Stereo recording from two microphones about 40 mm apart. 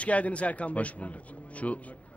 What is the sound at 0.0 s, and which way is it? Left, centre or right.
A man's voice, left.